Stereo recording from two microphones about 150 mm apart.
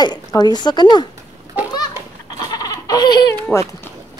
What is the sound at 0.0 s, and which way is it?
Speech, 25° left (ahead or behind).